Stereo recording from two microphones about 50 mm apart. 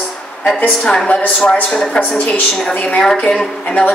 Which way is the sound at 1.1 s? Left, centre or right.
Left.